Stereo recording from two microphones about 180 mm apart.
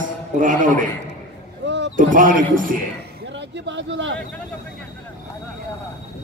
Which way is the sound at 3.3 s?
90° right.